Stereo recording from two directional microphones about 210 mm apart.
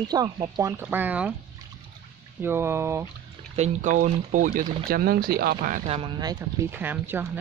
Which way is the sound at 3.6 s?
35° right (ahead or behind).